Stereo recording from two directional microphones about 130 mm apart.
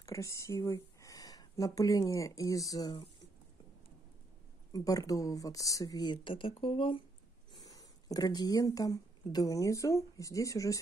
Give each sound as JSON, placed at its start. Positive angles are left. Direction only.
{"t": 0.0, "sound": "speech", "side_deg": 25}
{"t": 4.7, "sound": "speech", "side_deg": 25}
{"t": 7.5, "sound": "speech", "side_deg": 30}